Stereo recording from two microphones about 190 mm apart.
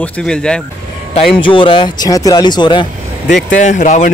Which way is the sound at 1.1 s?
25° left (ahead or behind).